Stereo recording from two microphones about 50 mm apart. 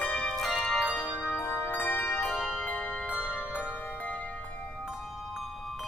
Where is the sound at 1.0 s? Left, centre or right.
Left.